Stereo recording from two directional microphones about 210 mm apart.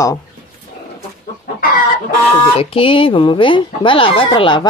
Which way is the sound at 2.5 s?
25° left (ahead or behind).